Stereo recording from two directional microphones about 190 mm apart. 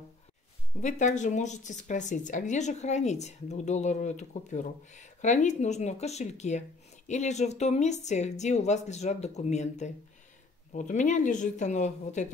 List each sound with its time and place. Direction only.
0.7 s speech: 40° left (ahead or behind)